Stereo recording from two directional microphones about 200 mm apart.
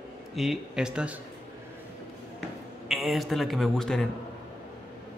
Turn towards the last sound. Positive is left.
turn(degrees=0)  # may be behind; listen again after turning